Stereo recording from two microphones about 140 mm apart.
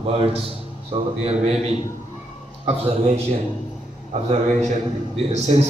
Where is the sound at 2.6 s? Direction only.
45° right (ahead or behind).